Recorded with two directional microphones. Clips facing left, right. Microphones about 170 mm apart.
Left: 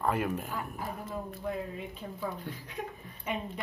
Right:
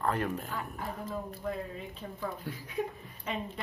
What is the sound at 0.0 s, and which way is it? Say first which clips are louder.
A woman's voice: left 1 dB; 10° left (ahead or behind).